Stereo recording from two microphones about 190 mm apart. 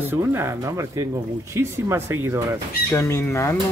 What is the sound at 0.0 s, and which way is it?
Speech, 10° right (ahead or behind).